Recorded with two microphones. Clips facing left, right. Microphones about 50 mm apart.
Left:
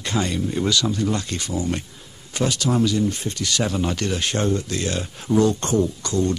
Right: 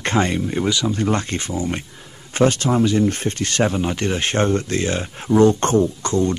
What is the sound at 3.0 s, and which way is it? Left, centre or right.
Speech, right.